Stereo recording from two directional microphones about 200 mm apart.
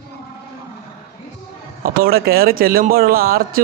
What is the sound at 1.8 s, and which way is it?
A man's voice, 50° right (ahead or behind).